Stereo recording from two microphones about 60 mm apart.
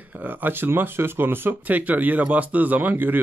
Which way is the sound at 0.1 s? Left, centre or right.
Right.